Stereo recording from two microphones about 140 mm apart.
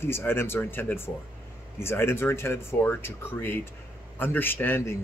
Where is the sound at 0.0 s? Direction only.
15° left (ahead or behind).